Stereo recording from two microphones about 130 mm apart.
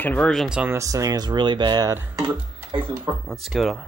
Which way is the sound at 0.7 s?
25° right (ahead or behind).